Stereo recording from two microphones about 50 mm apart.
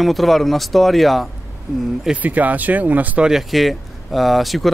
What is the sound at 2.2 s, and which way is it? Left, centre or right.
Speech, right.